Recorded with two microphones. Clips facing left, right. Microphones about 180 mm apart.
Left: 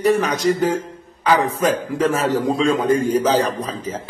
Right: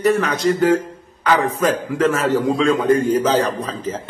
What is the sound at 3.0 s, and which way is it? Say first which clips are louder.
Speech: even; 15° left (ahead or behind).